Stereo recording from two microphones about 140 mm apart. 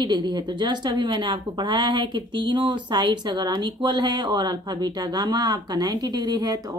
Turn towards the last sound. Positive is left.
turn(degrees=-30)  # may be behind; listen again after turning